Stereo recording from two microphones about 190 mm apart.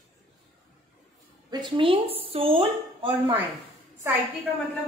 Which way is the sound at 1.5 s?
25° right (ahead or behind).